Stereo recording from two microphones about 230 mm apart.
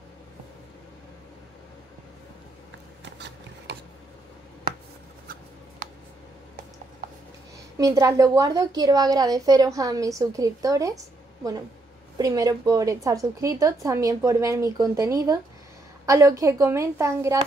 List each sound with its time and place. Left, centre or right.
3.1 s a sound: right
7.7 s a woman's voice: centre
12.2 s a woman's voice: centre